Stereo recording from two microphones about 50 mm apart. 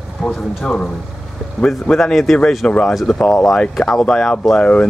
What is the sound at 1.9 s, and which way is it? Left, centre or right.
Speech, centre.